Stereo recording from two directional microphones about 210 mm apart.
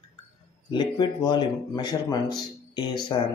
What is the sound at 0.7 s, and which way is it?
Speech, 20° left (ahead or behind).